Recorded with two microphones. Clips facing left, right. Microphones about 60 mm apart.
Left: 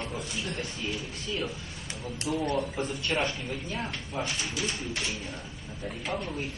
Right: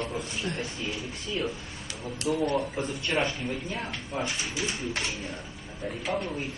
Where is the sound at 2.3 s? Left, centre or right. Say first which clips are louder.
Right 2 dB; centre.